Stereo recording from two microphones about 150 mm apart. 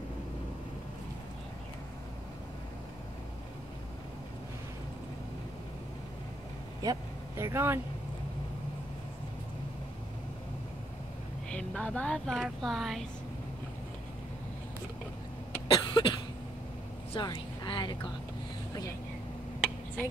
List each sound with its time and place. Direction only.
6.8 s speech: 20° right (ahead or behind)
11.5 s speech: 5° left (ahead or behind)
15.7 s cough: 35° left (ahead or behind)
17.1 s a woman's voice: 30° left (ahead or behind)